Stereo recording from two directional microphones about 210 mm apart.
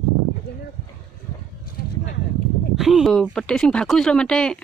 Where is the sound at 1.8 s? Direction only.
45° left (ahead or behind).